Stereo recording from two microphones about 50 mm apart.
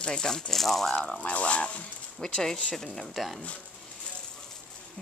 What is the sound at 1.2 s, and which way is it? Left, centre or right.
A woman's voice, left.